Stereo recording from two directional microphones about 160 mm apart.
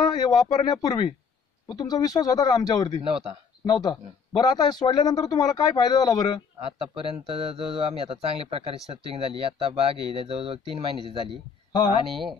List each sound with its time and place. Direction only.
0.1 s speech: 25° left (ahead or behind)
3.0 s speech: 35° right (ahead or behind)
3.6 s speech: 25° left (ahead or behind)
6.8 s speech: 35° right (ahead or behind)
11.7 s speech: 30° left (ahead or behind)